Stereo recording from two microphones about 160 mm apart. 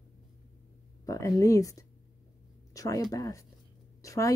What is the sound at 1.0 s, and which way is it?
Speech, 20° left (ahead or behind).